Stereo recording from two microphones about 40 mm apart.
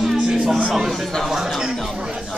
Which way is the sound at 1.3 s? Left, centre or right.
Centre.